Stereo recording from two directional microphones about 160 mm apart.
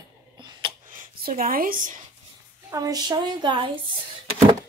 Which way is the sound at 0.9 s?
65° right (ahead or behind).